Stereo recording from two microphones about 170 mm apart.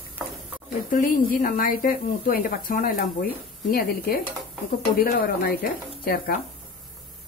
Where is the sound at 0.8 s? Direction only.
55° left (ahead or behind).